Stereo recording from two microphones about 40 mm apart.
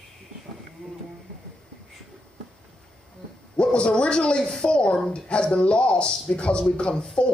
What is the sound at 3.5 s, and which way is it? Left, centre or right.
Speech, left.